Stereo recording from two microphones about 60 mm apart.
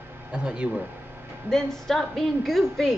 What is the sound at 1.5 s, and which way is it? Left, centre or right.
A woman's voice, centre.